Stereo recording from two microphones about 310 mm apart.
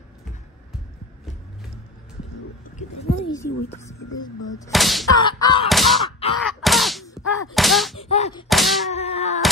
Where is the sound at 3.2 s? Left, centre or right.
Centre.